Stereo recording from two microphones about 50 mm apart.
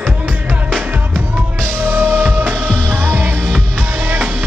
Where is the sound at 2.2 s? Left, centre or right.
Right.